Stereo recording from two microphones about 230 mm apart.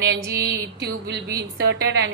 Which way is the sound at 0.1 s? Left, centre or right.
Right.